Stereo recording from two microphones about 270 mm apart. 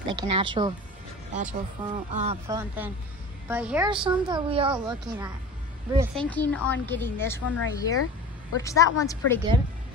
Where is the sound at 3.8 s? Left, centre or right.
Centre.